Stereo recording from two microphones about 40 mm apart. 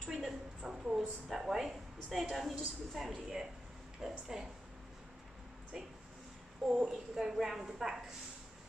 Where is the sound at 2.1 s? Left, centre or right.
Centre.